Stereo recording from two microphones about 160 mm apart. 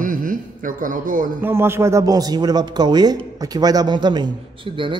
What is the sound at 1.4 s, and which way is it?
A man's voice, 15° right (ahead or behind).